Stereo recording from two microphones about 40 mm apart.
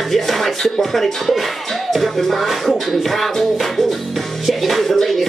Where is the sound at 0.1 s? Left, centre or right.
Centre.